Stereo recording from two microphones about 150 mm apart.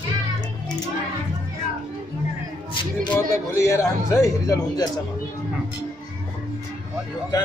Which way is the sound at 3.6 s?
20° left (ahead or behind).